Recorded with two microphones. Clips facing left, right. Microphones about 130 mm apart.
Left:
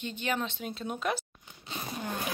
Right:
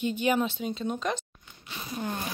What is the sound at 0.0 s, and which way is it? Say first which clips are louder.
Speech: right 7 dB; 10° right (ahead or behind).